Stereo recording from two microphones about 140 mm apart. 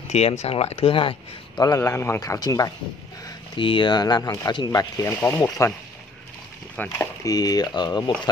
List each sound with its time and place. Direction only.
0.1 s speech: 50° left (ahead or behind)
1.6 s speech: 25° left (ahead or behind)
3.3 s speech: 35° left (ahead or behind); by 5.7 s 20° left (ahead or behind)
6.8 s speech: 15° left (ahead or behind)
7.2 s speech: 25° left (ahead or behind)